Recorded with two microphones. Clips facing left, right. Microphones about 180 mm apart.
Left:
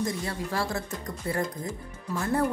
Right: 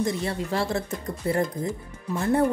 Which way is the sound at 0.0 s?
25° right (ahead or behind).